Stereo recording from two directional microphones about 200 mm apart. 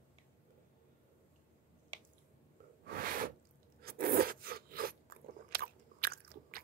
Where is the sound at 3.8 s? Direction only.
50° right (ahead or behind).